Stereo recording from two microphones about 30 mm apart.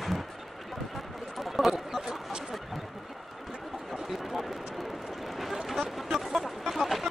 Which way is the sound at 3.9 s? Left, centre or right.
Centre.